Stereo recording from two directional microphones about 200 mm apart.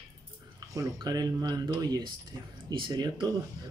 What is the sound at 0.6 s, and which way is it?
Speech, 15° right (ahead or behind).